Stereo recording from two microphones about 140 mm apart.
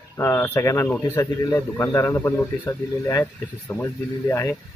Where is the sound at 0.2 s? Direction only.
20° left (ahead or behind).